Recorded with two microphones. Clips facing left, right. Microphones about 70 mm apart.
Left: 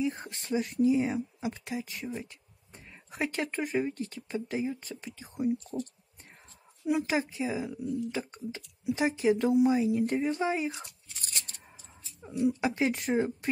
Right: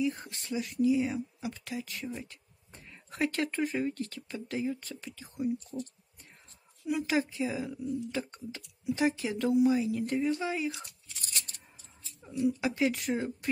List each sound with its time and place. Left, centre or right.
0.0 s speech: left
6.8 s speech: left
7.1 s speech: centre
12.2 s speech: left